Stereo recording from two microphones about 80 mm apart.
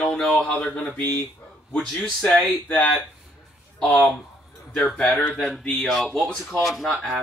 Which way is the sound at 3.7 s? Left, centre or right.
Centre.